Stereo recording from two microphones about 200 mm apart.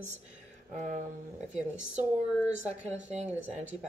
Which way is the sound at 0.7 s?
40° right (ahead or behind).